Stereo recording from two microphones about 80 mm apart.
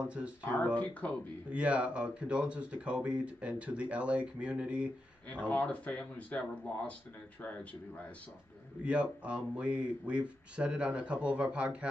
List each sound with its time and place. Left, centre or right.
0.0 s speech: centre
0.4 s speech: left
1.5 s speech: centre
5.5 s speech: centre
8.8 s speech: centre